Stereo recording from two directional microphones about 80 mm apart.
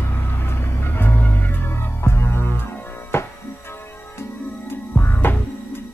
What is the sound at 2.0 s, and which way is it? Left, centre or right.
Music, left.